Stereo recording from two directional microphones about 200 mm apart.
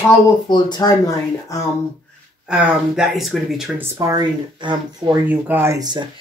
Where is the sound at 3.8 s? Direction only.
20° right (ahead or behind).